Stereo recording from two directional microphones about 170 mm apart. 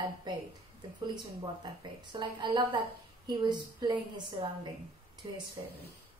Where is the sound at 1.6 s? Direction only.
25° right (ahead or behind).